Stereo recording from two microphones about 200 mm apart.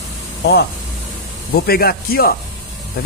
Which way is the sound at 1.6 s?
50° left (ahead or behind).